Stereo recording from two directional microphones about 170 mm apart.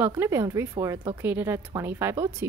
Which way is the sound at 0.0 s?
15° right (ahead or behind).